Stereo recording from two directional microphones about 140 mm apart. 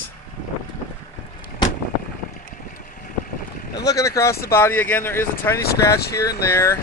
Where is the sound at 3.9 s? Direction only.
20° left (ahead or behind).